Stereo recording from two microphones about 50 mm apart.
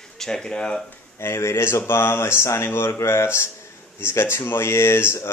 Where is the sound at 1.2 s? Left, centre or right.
Left.